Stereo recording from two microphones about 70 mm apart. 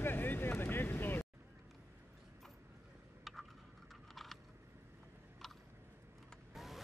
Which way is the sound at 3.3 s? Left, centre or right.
Centre.